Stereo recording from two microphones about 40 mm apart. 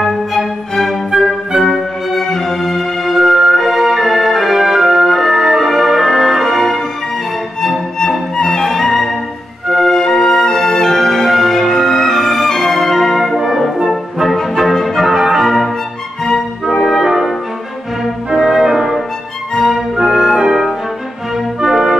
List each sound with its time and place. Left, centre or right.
0.0 s music: centre
8.4 s music: centre
13.4 s brass instrument: centre
14.3 s music: centre
15.0 s music: centre
16.6 s music: centre
18.3 s music: centre
20.1 s music: centre